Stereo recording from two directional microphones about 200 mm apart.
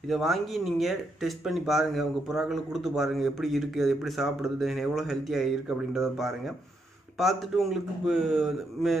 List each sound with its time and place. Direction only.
0.1 s speech: centre (ahead or behind)